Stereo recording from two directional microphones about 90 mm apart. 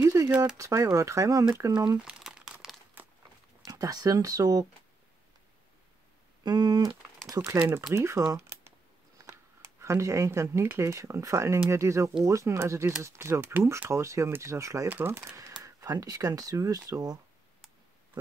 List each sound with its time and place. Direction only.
0.0 s a sound: 30° right (ahead or behind)
0.6 s speech: 35° right (ahead or behind)
2.0 s crumpling: 5° right (ahead or behind)
3.0 s a sound: 20° right (ahead or behind)
3.6 s speech: 45° right (ahead or behind)
6.4 s speech: 55° right (ahead or behind)
7.2 s speech: 40° right (ahead or behind)
8.4 s a sound: 30° right (ahead or behind)
9.2 s speech: 35° right (ahead or behind)
13.8 s speech: 35° right (ahead or behind)
14.9 s speech: 20° right (ahead or behind)
15.1 s speech: 35° right (ahead or behind)